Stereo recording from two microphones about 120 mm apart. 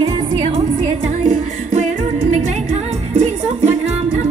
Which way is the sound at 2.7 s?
65° right (ahead or behind).